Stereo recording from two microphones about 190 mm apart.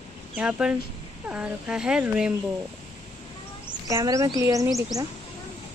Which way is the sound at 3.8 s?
15° right (ahead or behind).